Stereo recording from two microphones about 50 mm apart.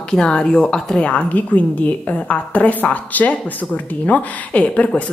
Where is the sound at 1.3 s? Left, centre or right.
Left.